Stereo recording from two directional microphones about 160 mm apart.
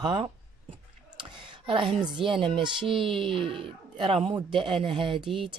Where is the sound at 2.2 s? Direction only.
30° right (ahead or behind).